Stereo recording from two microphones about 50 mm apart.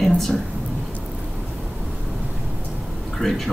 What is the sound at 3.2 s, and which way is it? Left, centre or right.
Speech, centre.